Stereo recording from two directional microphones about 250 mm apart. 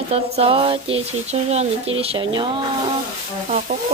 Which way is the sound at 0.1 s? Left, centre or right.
Right.